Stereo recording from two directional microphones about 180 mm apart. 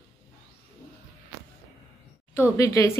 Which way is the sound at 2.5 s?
15° left (ahead or behind).